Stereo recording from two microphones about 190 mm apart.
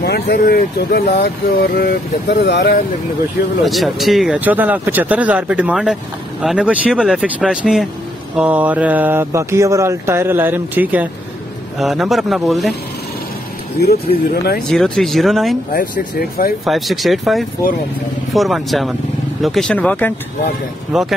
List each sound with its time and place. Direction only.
0.0 s speech: 55° left (ahead or behind)
3.6 s speech: centre (ahead or behind)
13.7 s speech: 55° left (ahead or behind)
14.7 s speech: centre (ahead or behind)
15.7 s speech: 50° left (ahead or behind)
16.6 s speech: centre (ahead or behind)
20.9 s speech: centre (ahead or behind)